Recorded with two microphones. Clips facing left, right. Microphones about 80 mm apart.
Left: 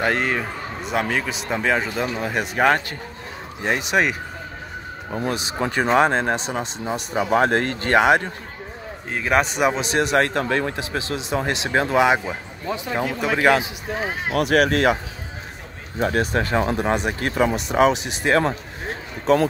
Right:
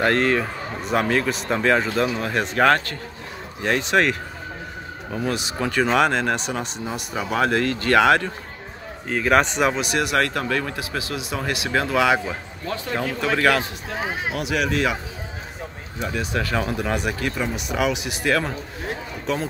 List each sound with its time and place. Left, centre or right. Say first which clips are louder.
0.0 s speech: right 2 dB; centre
5.2 s a man's voice: even; left
9.1 s speech: right 2 dB; centre
9.8 s a man's voice: left 2 dB; left
14.3 s speech: left 7 dB; left
16.0 s speech: left 5 dB; left
16.4 s a man's voice: left 3 dB; left
17.2 s speech: left 5 dB; left
17.6 s speech: left 5 dB; left